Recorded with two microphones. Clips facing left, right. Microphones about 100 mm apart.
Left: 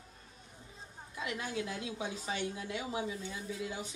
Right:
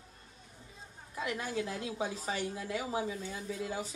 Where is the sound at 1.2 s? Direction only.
35° right (ahead or behind).